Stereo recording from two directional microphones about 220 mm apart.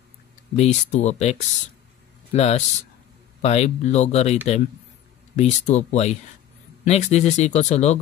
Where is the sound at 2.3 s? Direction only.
30° left (ahead or behind).